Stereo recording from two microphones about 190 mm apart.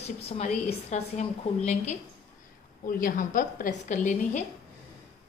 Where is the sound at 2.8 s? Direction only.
45° left (ahead or behind).